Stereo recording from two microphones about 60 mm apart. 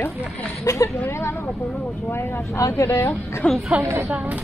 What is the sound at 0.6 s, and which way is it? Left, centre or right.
Speech, left.